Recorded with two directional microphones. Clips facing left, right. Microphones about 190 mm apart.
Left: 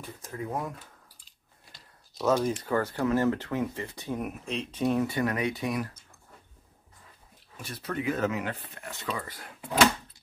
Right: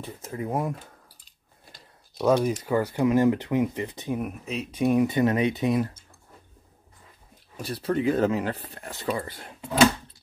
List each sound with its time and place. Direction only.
0.0 s speech: 25° right (ahead or behind)
2.1 s speech: 10° right (ahead or behind)
4.2 s speech: 5° right (ahead or behind); by 6.0 s 25° right (ahead or behind)
7.5 s speech: 35° right (ahead or behind)